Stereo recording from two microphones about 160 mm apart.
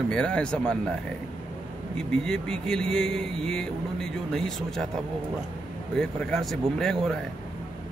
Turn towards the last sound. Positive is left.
turn(degrees=0)  # may be behind; listen again after turning